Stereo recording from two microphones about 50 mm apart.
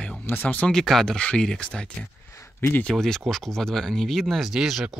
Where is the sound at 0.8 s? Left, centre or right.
Centre.